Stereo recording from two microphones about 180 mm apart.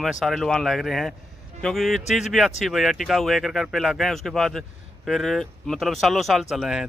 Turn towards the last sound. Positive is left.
turn(degrees=0)  # may be behind; listen again after turning